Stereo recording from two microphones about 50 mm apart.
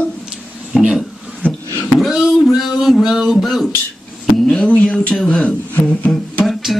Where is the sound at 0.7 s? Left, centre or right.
Centre.